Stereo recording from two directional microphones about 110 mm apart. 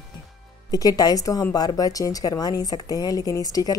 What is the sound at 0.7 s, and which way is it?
Speech, 35° left (ahead or behind).